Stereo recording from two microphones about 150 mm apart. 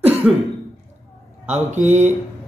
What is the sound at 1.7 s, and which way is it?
Speech, 50° right (ahead or behind).